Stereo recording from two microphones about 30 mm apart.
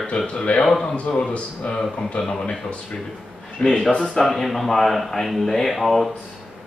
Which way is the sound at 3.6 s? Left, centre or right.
Left.